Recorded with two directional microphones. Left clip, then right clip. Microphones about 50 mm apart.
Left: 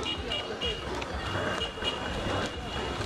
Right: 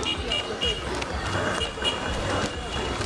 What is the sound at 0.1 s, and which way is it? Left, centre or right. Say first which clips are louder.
Vehicle: right 5 dB; centre.